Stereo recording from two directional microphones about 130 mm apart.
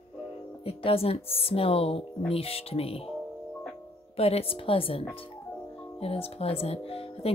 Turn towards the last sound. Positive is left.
turn(degrees=50)  # may be behind; listen again after turning